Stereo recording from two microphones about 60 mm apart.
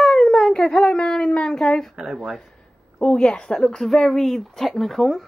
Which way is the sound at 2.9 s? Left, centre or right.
Centre.